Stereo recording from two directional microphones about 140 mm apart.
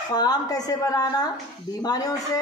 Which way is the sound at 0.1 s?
30° left (ahead or behind).